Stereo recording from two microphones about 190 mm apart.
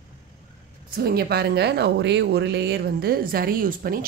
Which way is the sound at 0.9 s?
55° right (ahead or behind).